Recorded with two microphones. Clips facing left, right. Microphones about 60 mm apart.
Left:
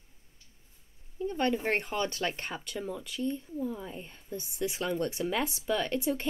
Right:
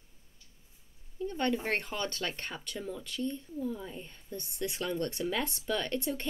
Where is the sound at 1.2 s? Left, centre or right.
Centre.